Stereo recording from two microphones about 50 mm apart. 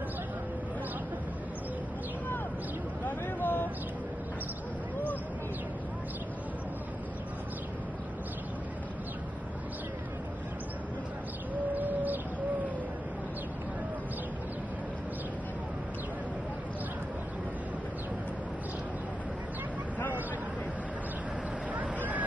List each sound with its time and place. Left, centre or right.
3.1 s a sound: left
11.7 s bird: right
21.7 s boat: right